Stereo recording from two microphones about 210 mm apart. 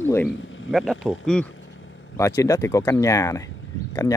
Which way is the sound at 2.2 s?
15° left (ahead or behind).